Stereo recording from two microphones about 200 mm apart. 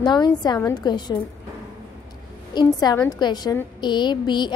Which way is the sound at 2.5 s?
20° left (ahead or behind).